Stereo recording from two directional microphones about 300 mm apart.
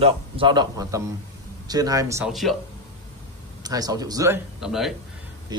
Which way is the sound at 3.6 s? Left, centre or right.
Centre.